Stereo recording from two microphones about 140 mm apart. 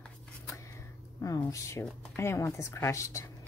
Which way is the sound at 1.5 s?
20° left (ahead or behind).